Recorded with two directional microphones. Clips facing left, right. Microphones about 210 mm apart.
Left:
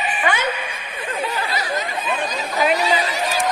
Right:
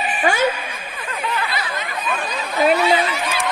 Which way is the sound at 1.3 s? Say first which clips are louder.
Even; 35° left (ahead or behind).